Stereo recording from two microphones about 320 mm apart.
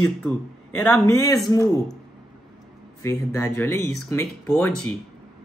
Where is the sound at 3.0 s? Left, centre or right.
Centre.